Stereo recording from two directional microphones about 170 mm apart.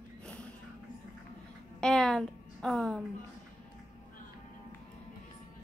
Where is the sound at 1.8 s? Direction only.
5° left (ahead or behind).